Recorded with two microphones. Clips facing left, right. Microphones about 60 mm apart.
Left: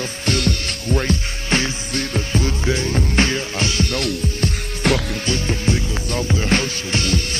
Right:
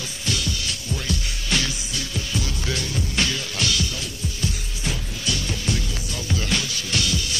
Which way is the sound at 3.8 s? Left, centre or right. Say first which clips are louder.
Left 9 dB; left.